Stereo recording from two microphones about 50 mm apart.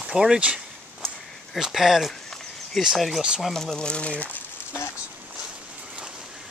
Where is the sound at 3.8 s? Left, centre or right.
Left.